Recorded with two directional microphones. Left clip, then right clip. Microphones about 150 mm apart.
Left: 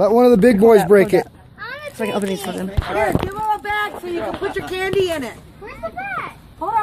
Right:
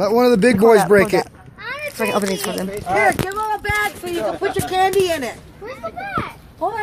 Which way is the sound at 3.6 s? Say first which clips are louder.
Right 2 dB; centre (ahead or behind).